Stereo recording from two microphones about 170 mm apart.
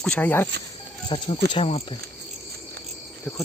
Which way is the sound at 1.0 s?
25° left (ahead or behind).